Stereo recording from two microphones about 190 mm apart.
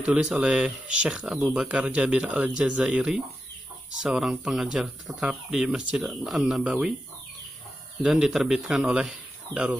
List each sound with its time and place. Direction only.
0.0 s speech: 5° right (ahead or behind)
8.0 s speech: centre (ahead or behind)